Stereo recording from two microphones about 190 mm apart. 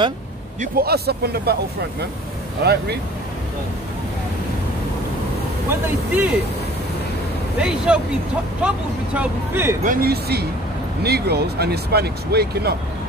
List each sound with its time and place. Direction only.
0.6 s speech: 55° right (ahead or behind)
2.6 s speech: 60° right (ahead or behind)
5.7 s speech: 10° right (ahead or behind)
7.6 s speech: 5° right (ahead or behind)
9.8 s speech: 55° right (ahead or behind)